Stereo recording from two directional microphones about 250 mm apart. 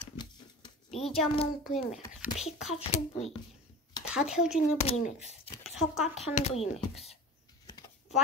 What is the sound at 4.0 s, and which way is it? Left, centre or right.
Speech, centre.